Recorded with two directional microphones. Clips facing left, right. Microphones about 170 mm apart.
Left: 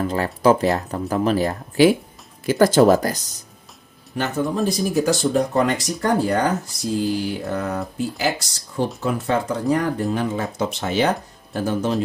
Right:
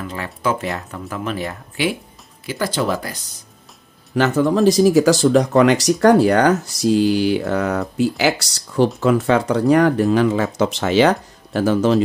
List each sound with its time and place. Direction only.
0.0 s speech: 35° left (ahead or behind)
4.1 s speech: 90° right